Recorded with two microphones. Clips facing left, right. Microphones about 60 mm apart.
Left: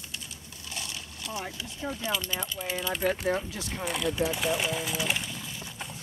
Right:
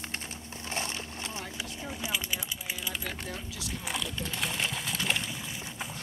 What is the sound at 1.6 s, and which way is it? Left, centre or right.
Speech, centre.